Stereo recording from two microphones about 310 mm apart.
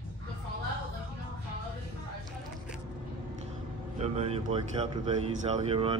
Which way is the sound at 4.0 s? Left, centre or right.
Centre.